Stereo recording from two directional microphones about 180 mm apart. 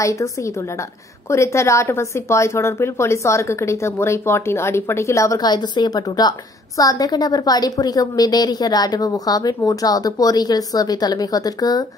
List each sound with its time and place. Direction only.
0.0 s a woman's voice: 15° left (ahead or behind)